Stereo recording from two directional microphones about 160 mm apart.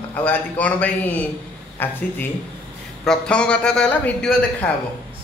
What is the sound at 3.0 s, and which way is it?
A man's voice, 5° left (ahead or behind).